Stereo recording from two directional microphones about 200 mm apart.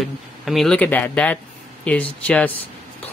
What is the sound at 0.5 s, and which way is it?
Speech, 5° left (ahead or behind).